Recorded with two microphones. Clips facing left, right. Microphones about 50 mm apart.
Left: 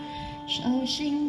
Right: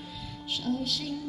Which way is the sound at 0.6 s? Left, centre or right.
Left.